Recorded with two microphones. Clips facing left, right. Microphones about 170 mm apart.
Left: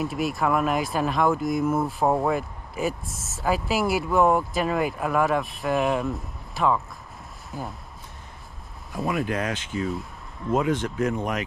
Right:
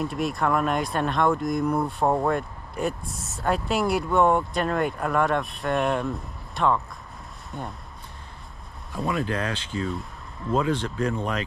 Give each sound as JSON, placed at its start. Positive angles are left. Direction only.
{"t": 0.0, "sound": "speech", "side_deg": 0}
{"t": 8.9, "sound": "speech", "side_deg": 15}
{"t": 11.1, "sound": "speech", "side_deg": 15}